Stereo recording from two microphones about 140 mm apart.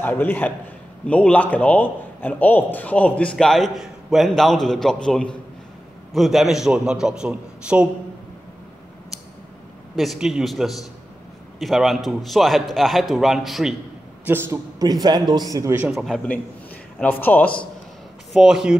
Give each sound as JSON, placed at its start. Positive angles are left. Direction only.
{"t": 0.0, "sound": "a man's voice", "side_deg": 15}
{"t": 9.9, "sound": "a man's voice", "side_deg": 0}
{"t": 14.2, "sound": "a man's voice", "side_deg": -15}
{"t": 15.9, "sound": "a man's voice", "side_deg": 0}
{"t": 17.0, "sound": "a man's voice", "side_deg": 15}
{"t": 18.3, "sound": "a man's voice", "side_deg": -5}